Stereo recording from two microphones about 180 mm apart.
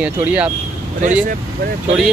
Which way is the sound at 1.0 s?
45° right (ahead or behind).